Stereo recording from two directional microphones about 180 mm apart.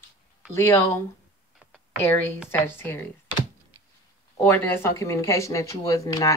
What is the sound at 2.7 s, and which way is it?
Speech, 10° left (ahead or behind).